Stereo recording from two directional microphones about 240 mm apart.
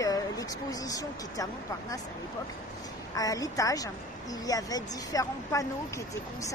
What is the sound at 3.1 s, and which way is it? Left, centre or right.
Speech, centre.